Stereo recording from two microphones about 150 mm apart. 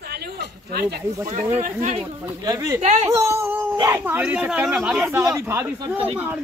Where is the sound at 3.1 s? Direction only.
20° right (ahead or behind).